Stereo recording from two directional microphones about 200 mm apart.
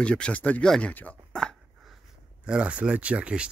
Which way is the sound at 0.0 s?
5° left (ahead or behind).